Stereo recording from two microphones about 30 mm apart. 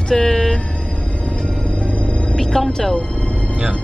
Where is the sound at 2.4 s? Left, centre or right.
Left.